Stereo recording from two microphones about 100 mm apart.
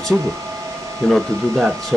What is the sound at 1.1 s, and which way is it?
Speech, centre (ahead or behind).